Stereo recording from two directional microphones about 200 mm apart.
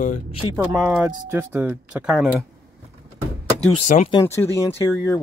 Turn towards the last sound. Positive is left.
turn(degrees=15)  # may be behind; listen again after turning